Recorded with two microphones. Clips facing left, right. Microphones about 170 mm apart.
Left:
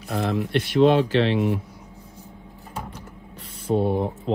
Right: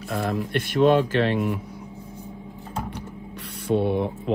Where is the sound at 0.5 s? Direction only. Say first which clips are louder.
Left 1 dB; 50° right (ahead or behind).